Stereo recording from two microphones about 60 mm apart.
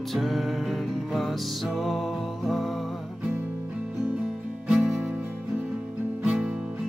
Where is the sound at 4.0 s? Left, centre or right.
Centre.